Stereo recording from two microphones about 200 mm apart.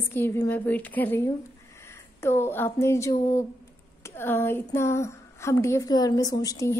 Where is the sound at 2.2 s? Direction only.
10° left (ahead or behind).